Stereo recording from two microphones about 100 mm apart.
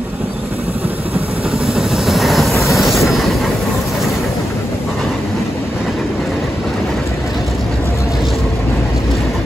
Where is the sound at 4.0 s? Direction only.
Centre (ahead or behind).